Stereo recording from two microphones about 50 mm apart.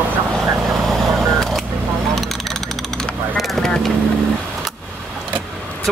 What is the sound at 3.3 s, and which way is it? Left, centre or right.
Vehicle, centre.